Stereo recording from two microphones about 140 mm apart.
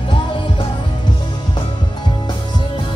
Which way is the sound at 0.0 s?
35° left (ahead or behind).